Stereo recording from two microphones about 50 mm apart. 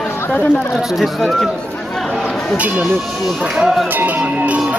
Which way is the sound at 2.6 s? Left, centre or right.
Right.